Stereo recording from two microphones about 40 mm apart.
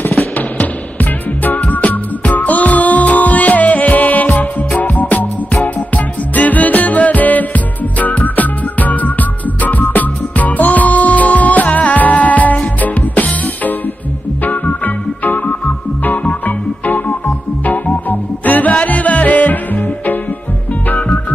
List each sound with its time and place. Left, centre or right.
1.6 s music: left
16.4 s organ: left
18.4 s music: left